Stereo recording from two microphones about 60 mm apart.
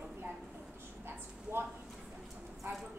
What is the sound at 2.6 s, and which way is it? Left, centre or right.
Speech, right.